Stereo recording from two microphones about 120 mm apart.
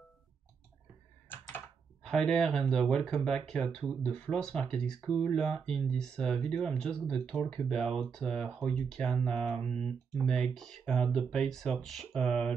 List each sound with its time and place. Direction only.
1.3 s computer keyboard: 15° left (ahead or behind)
2.0 s speech: 5° left (ahead or behind)